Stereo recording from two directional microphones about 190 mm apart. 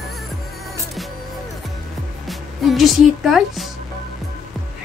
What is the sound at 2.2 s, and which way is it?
Music, centre (ahead or behind).